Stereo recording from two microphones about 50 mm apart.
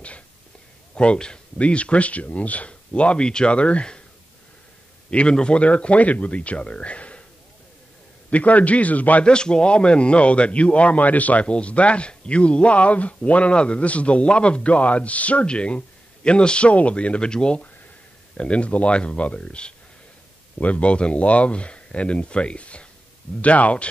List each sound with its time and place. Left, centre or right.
0.9 s speech: centre
5.1 s speech: left
8.3 s speech: left
9.2 s speech: centre